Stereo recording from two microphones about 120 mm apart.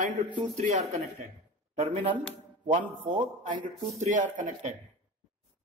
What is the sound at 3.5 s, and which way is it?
A man's voice, 90° right.